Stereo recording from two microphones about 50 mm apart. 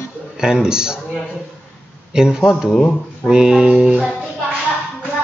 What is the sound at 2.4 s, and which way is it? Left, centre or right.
Music, centre.